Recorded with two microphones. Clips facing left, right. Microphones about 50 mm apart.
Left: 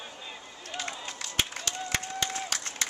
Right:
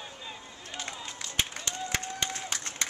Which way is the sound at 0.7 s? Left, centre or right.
Left.